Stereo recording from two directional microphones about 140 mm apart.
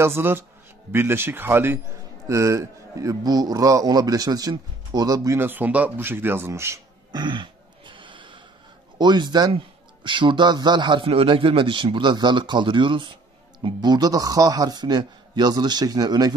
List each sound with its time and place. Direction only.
0.0 s a man's voice: 15° right (ahead or behind)
7.2 s a sound: 35° right (ahead or behind)
8.9 s a man's voice: 30° right (ahead or behind)